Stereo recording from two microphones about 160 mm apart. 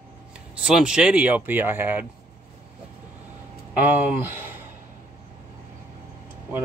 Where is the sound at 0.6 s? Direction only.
5° right (ahead or behind).